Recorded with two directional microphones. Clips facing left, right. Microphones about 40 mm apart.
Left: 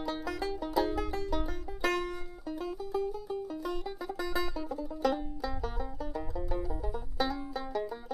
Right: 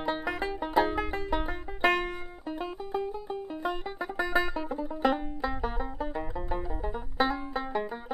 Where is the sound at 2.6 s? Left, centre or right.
Right.